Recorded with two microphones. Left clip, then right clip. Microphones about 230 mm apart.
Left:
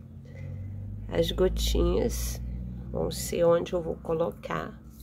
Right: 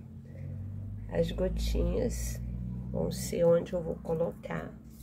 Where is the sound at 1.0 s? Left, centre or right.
Left.